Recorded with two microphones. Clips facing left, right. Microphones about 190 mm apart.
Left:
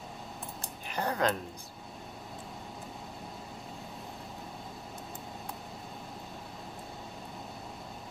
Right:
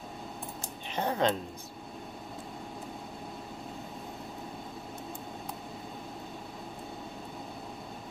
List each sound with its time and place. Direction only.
0.8 s speech: 20° right (ahead or behind)